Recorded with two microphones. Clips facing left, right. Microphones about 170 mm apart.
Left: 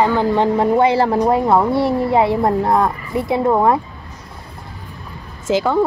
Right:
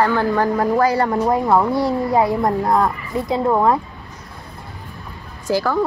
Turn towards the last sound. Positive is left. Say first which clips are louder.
# left 3 dB
turn(degrees=20)  # may be behind; listen again after turning